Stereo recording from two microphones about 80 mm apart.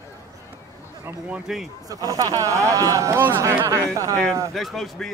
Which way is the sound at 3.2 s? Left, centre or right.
Right.